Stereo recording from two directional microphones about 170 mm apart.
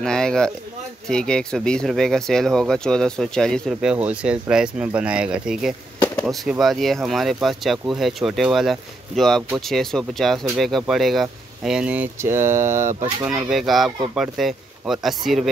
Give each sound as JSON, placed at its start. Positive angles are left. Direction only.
{"t": 0.0, "sound": "speech", "side_deg": 5}